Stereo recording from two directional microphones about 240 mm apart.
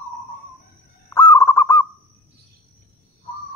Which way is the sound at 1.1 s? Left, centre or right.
Centre.